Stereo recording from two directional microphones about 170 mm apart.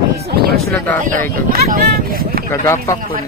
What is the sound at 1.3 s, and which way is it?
Speech, 60° right (ahead or behind).